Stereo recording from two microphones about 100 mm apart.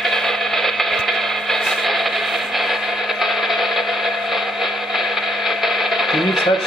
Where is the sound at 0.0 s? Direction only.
5° left (ahead or behind).